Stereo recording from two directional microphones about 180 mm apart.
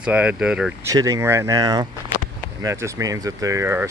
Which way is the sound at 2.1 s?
50° left (ahead or behind).